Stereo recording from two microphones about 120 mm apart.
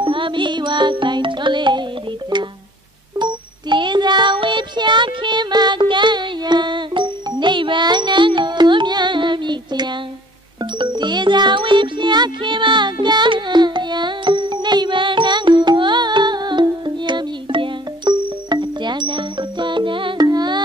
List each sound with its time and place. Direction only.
0.0 s music: 45° right (ahead or behind)
3.2 s music: 40° right (ahead or behind)